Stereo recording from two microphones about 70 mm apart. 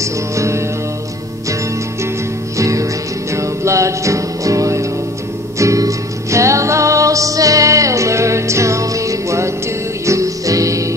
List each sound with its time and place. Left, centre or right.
0.0 s music: right
2.5 s music: right